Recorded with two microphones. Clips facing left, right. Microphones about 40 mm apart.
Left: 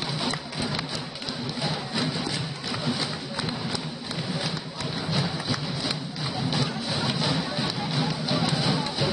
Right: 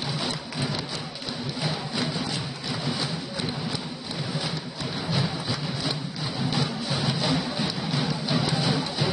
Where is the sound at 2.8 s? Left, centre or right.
Left.